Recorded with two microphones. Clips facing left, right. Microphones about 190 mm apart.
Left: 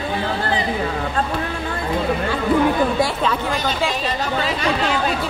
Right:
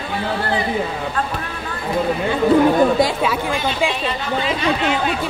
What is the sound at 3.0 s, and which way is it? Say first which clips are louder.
Speech: right 2 dB; 10° right (ahead or behind).